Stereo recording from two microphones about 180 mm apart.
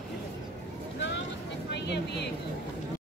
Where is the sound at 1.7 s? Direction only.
70° left (ahead or behind).